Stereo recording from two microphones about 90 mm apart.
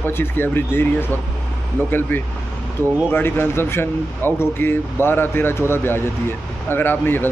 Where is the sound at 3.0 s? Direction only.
25° left (ahead or behind).